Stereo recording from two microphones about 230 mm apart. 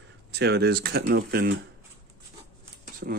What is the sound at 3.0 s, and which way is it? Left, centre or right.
Speech, right.